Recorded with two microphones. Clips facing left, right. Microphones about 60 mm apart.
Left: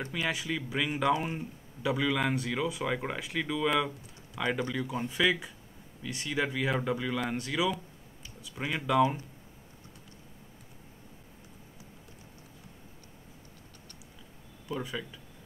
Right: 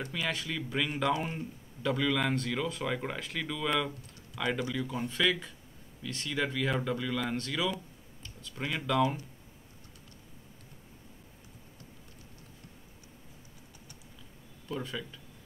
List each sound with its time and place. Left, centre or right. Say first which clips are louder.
0.1 s speech: left 4 dB; centre
14.7 s speech: left 1 dB; centre